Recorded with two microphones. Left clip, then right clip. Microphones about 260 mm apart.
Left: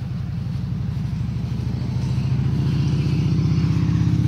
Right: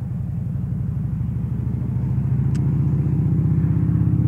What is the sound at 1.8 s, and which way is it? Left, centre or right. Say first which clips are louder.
Vehicle: even; left.